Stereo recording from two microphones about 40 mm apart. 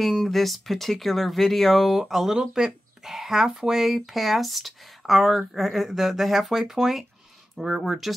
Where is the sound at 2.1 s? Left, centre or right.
Centre.